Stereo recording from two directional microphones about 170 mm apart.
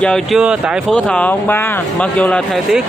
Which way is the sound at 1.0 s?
10° left (ahead or behind).